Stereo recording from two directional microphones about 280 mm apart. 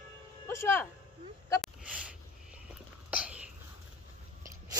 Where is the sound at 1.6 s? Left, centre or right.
Centre.